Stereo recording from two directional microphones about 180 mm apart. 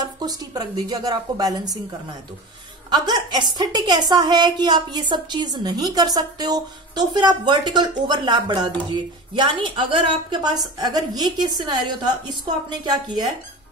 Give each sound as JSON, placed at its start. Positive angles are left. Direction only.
{"t": 0.0, "sound": "a woman's voice", "side_deg": -20}
{"t": 2.9, "sound": "a woman's voice", "side_deg": -25}